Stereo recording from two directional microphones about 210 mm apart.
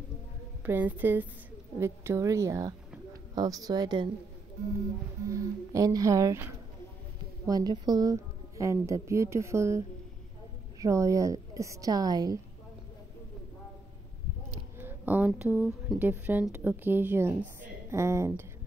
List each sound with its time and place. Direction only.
0.7 s a woman's voice: 10° right (ahead or behind)
5.3 s a woman's voice: 15° right (ahead or behind)
14.8 s a sound: 10° right (ahead or behind)
15.5 s a woman's voice: 10° right (ahead or behind)